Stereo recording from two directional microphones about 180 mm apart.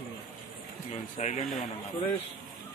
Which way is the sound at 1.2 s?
40° left (ahead or behind).